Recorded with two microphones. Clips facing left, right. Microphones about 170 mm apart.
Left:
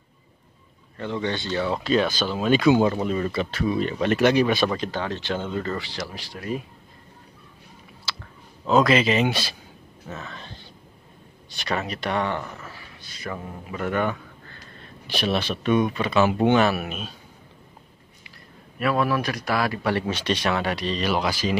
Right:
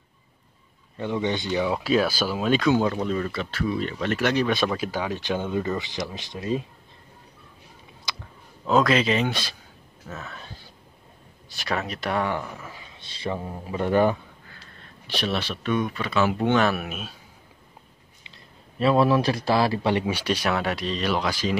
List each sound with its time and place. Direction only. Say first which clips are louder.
0.9 s speech: right 1 dB; 15° right (ahead or behind); by 4.5 s 15° left (ahead or behind)
4.5 s speech: left 1 dB; centre (ahead or behind); by 6.6 s 20° right (ahead or behind)
8.1 s clicking: even; 15° right (ahead or behind)
8.6 s speech: left 2 dB; centre (ahead or behind); by 14.1 s 30° right (ahead or behind)
15.0 s speech: left 3 dB; 10° left (ahead or behind)
16.5 s speech: left 2 dB; 5° left (ahead or behind)
18.8 s speech: right 3 dB; 25° right (ahead or behind); by 21.5 s 5° left (ahead or behind)